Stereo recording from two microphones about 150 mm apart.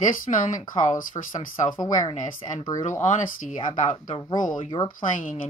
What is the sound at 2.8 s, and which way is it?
Speech, 55° left (ahead or behind).